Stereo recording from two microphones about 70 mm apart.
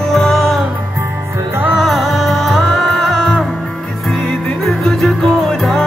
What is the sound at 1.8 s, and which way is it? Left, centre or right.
Music, centre.